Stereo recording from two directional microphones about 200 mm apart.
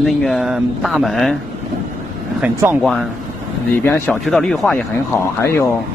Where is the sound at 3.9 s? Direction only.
10° left (ahead or behind).